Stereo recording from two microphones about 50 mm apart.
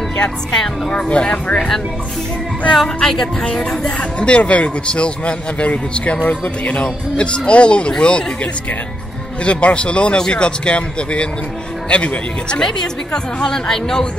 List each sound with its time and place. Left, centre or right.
0.6 s a woman's voice: centre
2.7 s a woman's voice: centre
9.4 s a woman's voice: left
12.6 s a woman's voice: centre